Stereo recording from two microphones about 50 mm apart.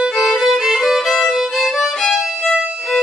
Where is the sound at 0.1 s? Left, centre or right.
Centre.